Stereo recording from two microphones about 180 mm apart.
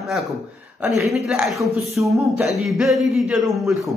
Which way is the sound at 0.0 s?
Centre (ahead or behind).